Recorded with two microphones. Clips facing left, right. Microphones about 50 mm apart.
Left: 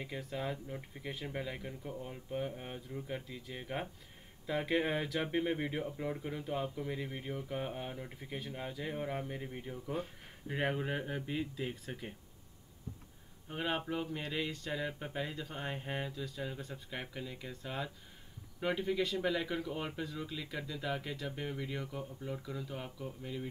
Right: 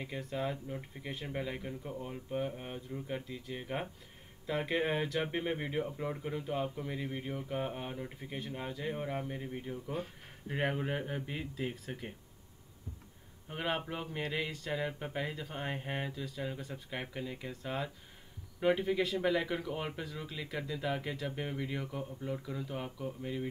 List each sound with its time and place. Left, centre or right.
0.0 s speech: centre
13.5 s speech: centre
16.5 s speech: centre
16.9 s speech: centre